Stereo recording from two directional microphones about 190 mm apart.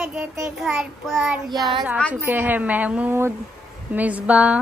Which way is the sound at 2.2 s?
10° right (ahead or behind).